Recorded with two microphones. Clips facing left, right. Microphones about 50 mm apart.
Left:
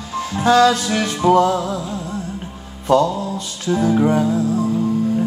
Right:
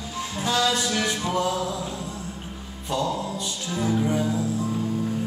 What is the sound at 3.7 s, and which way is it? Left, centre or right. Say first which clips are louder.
Music: left 8 dB; left.